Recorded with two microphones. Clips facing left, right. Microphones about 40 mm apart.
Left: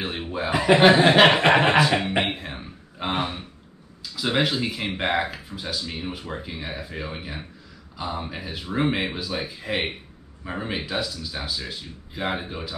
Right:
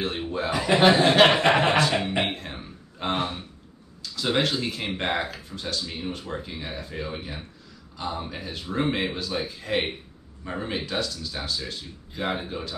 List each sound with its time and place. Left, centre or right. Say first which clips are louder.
0.0 s speech: even; centre
1.7 s music: left 3 dB; centre
2.1 s a sound: left 2 dB; centre
4.0 s speech: left 1 dB; centre